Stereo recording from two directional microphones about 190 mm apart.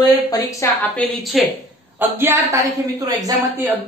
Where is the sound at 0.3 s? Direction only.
15° left (ahead or behind).